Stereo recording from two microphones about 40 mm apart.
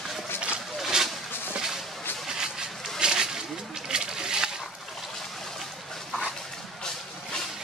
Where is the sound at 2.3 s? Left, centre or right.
Centre.